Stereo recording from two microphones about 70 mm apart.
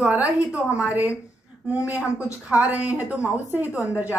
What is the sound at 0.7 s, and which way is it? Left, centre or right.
Speech, centre.